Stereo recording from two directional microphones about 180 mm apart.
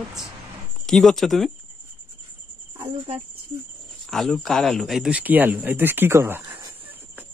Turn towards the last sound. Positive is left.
turn(degrees=-10)  # may be behind; listen again after turning